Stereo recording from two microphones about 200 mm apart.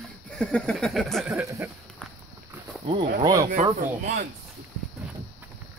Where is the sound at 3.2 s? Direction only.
15° right (ahead or behind).